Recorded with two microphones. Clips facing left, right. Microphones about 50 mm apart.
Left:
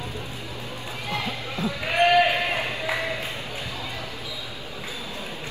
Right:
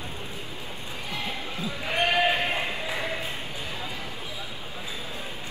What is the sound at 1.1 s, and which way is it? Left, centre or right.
Basketball bounce, left.